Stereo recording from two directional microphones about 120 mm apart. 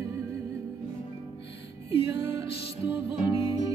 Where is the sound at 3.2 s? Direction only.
40° left (ahead or behind).